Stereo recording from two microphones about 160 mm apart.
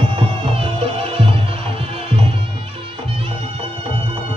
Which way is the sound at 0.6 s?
35° right (ahead or behind).